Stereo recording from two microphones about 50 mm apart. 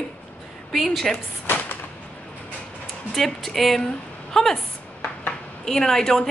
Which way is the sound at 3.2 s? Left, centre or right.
Centre.